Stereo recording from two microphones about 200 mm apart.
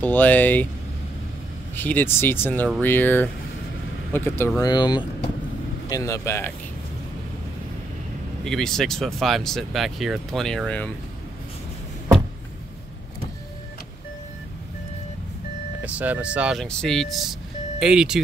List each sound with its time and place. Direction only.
0.0 s speech: 10° left (ahead or behind)
1.8 s speech: 10° left (ahead or behind)
8.5 s speech: centre (ahead or behind)
15.8 s speech: 5° right (ahead or behind)